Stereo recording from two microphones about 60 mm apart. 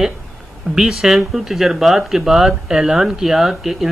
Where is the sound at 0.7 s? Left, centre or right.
Centre.